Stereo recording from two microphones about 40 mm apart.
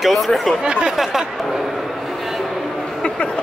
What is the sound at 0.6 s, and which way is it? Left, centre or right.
Speech, right.